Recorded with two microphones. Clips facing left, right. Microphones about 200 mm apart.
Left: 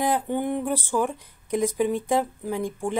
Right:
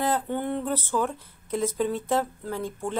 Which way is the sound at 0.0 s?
15° left (ahead or behind).